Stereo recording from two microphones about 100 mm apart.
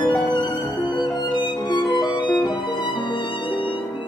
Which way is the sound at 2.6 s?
55° left (ahead or behind).